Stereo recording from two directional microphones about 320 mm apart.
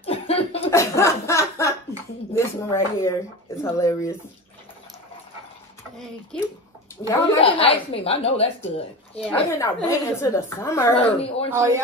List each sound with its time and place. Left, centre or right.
0.0 s cough: centre
0.7 s chuckle: centre
2.3 s a woman's voice: centre
6.3 s speech: centre
7.1 s a woman's voice: centre
9.3 s a woman's voice: centre
11.5 s a man's voice: centre